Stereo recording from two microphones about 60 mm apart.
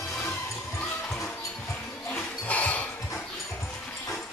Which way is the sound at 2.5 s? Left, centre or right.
Left.